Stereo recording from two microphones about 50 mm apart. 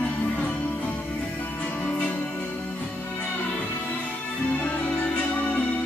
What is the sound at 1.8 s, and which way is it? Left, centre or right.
Music, left.